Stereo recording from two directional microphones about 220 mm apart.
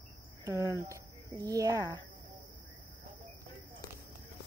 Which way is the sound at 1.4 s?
15° right (ahead or behind).